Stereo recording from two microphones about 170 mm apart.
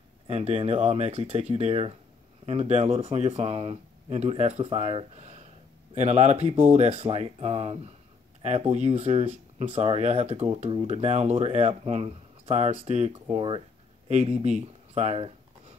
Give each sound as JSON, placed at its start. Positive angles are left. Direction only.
{"t": 0.3, "sound": "speech", "side_deg": -40}